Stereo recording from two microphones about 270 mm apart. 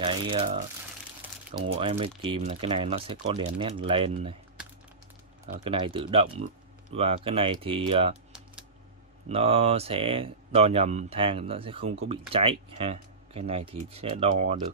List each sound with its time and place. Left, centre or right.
0.0 s speech: centre
1.8 s speech: centre
5.6 s speech: centre
9.3 s speech: right